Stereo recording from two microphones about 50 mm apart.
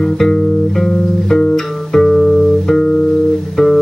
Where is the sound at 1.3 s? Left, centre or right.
Centre.